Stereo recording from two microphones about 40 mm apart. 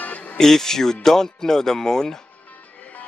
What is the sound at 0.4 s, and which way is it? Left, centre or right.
Speech, centre.